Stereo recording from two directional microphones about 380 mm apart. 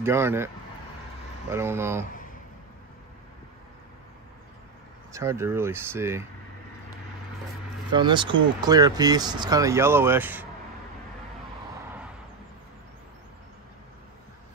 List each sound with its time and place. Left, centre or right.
0.0 s speech: centre
1.5 s speech: centre
5.1 s speech: centre
7.9 s speech: centre